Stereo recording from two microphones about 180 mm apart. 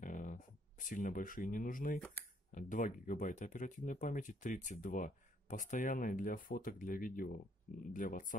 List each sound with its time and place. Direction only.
0.0 s a sound: 45° left (ahead or behind)
2.0 s speech: 10° left (ahead or behind)
2.5 s speech: 45° left (ahead or behind)